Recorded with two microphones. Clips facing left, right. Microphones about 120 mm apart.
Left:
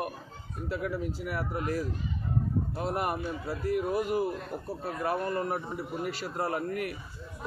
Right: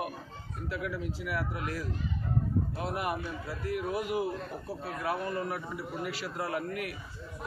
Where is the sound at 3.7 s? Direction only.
40° left (ahead or behind).